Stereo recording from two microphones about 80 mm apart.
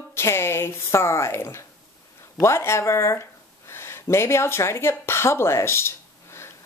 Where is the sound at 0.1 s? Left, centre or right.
Left.